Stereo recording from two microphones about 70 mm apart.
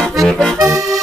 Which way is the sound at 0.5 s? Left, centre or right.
Right.